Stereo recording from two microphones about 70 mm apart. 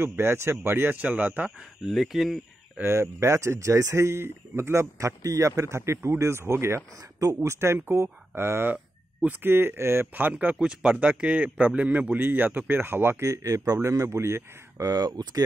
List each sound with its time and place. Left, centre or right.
0.0 s speech: right
1.9 s speech: centre
2.8 s speech: right
14.9 s speech: right